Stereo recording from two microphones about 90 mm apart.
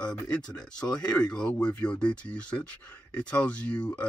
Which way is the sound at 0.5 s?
10° left (ahead or behind).